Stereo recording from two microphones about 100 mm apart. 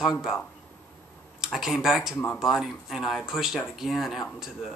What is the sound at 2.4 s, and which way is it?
Speech, 5° right (ahead or behind).